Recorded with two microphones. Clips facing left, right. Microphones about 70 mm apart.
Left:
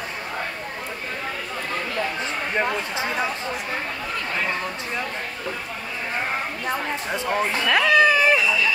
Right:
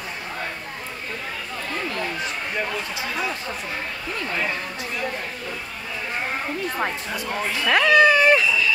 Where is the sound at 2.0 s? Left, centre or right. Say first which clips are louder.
Left 2 dB; left.